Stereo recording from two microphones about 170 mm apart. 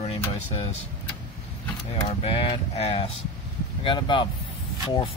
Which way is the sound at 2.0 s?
35° left (ahead or behind).